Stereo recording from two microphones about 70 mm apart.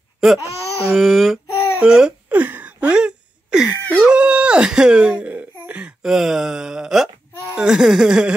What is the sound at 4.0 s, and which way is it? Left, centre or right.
Giggle, centre.